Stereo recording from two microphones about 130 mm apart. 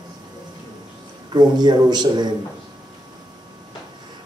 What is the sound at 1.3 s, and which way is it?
Speech, 35° right (ahead or behind).